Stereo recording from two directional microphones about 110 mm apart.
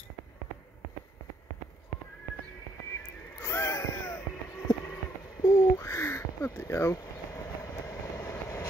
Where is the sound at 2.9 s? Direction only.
25° left (ahead or behind).